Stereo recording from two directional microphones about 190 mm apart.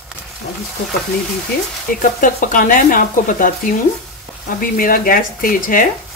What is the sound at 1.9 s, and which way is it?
Speech, 45° left (ahead or behind).